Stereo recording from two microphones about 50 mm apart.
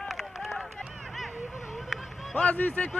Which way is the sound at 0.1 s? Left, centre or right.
Centre.